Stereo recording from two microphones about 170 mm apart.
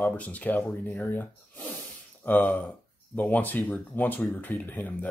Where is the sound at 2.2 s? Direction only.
10° left (ahead or behind).